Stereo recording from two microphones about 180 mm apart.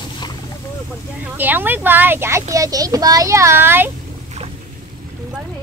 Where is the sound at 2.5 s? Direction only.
20° right (ahead or behind).